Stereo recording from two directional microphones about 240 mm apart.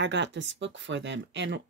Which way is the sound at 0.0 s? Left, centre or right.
Right.